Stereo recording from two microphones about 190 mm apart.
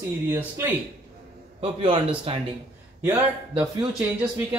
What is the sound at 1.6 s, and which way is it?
Speech, 25° right (ahead or behind).